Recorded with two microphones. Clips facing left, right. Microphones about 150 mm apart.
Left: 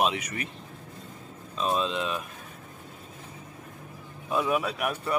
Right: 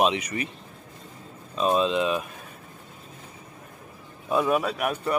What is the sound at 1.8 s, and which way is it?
Speech, 5° right (ahead or behind).